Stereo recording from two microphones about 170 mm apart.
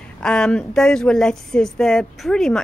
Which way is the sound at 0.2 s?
5° left (ahead or behind).